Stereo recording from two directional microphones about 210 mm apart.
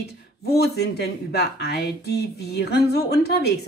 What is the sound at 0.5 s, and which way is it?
Speech, 50° left (ahead or behind).